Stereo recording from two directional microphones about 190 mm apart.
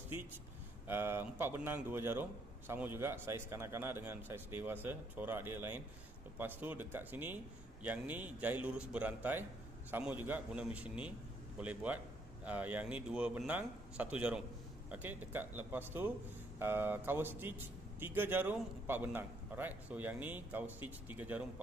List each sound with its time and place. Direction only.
0.8 s a man's voice: 10° right (ahead or behind)